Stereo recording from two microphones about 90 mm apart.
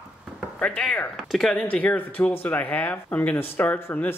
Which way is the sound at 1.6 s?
15° left (ahead or behind).